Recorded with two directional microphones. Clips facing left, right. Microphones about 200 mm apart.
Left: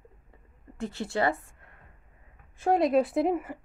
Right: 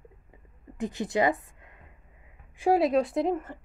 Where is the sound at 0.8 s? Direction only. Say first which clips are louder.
Right 2 dB; 15° right (ahead or behind).